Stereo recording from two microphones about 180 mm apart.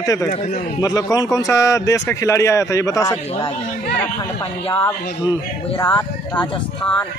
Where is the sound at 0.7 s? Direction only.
20° left (ahead or behind).